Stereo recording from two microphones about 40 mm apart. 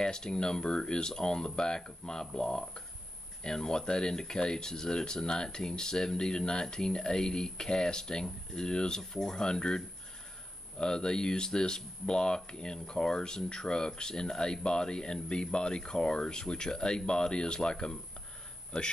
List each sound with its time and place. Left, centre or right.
0.0 s speech: centre